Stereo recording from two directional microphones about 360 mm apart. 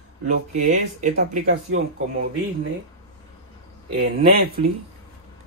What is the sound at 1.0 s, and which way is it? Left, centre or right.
Speech, right.